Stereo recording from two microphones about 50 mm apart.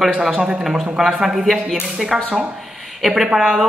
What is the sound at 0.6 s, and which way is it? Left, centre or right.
Speech, centre.